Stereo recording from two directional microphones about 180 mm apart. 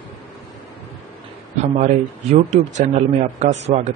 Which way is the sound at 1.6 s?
40° right (ahead or behind).